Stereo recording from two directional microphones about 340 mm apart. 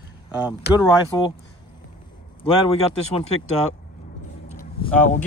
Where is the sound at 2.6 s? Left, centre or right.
Centre.